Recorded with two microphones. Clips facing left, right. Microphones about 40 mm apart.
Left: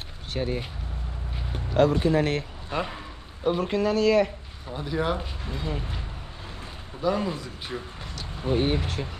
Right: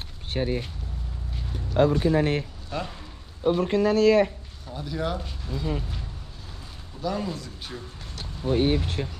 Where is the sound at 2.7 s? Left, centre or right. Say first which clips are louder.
Left 6 dB; left.